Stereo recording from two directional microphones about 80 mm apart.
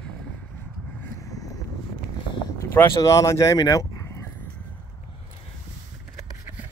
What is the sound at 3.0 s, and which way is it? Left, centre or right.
Speech, left.